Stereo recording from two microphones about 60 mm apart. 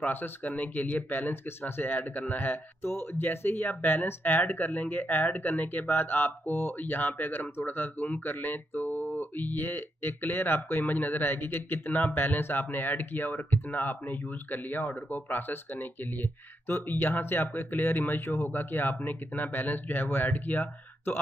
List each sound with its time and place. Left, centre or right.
0.0 s speech: left